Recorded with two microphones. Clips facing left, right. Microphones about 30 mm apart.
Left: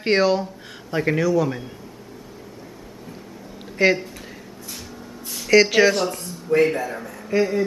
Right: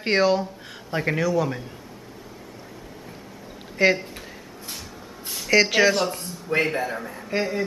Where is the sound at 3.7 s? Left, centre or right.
Centre.